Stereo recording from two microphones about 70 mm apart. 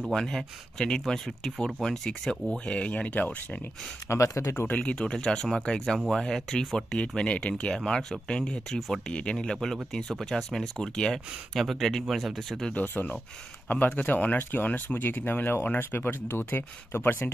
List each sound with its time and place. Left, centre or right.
0.1 s speech: centre
4.1 s speech: left
4.6 s speech: left; by 9.0 s centre
9.1 s speech: centre
12.7 s speech: left